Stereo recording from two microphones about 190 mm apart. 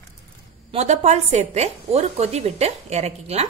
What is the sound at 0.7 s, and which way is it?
A woman's voice, 35° right (ahead or behind).